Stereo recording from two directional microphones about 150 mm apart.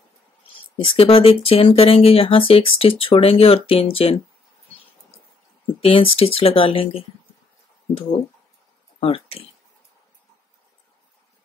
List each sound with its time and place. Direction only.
0.8 s speech: 40° left (ahead or behind)
5.8 s speech: 35° left (ahead or behind)
9.0 s speech: 40° left (ahead or behind)